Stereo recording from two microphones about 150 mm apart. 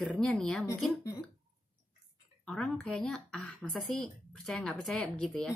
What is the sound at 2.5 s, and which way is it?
A woman's voice, 5° left (ahead or behind).